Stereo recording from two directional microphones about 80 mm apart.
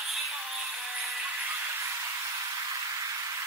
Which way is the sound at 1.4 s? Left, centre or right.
Right.